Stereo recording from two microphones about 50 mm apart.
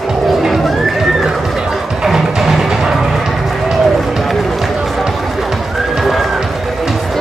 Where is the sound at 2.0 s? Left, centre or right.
Centre.